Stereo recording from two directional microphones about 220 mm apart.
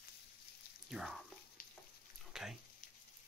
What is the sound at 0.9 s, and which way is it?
Speech, centre (ahead or behind).